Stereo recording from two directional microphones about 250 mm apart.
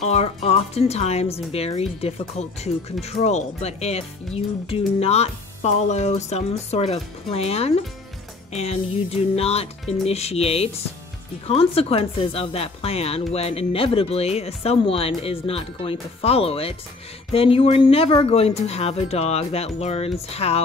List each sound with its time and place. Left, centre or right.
0.0 s speech: left